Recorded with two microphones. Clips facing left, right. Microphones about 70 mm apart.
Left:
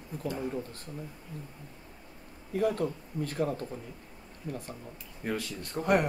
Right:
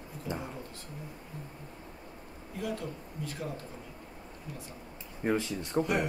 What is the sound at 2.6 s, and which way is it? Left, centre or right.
Speech, left.